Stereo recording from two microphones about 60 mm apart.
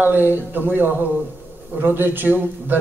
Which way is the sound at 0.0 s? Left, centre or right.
Right.